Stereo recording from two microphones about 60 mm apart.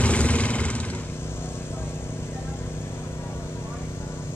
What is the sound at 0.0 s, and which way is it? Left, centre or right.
Vehicle, left.